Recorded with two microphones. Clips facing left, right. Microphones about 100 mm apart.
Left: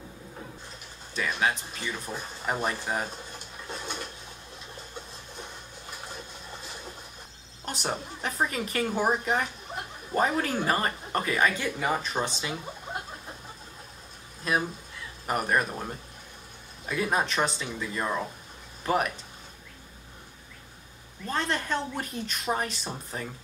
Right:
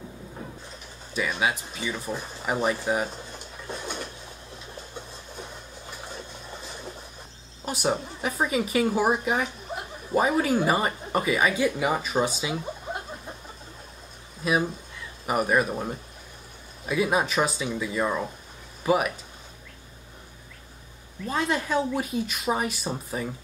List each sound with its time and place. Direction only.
1.1 s a woman's voice: 5° right (ahead or behind)
3.7 s a sound: 5° right (ahead or behind)
7.6 s a woman's voice: 5° right (ahead or behind)
14.4 s a woman's voice: 5° right (ahead or behind)
21.3 s a woman's voice: 5° right (ahead or behind)